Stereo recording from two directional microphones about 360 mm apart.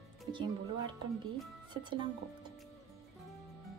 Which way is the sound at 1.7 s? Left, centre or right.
Centre.